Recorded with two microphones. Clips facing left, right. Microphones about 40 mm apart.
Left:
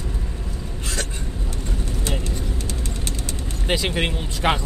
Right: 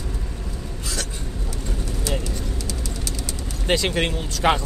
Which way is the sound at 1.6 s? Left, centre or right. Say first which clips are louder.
Left 1 dB; left.